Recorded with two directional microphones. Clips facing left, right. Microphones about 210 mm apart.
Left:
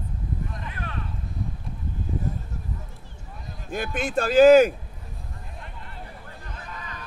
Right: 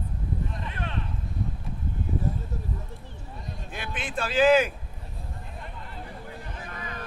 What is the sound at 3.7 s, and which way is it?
Speech, 45° left (ahead or behind).